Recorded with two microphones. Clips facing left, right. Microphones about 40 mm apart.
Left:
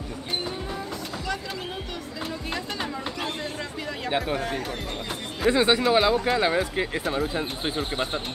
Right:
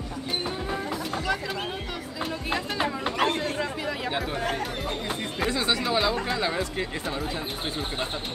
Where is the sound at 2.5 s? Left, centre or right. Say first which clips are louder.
Right 5 dB; right.